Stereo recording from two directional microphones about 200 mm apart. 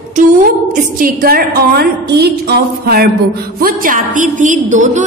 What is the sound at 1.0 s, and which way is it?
A woman's voice, 45° right (ahead or behind).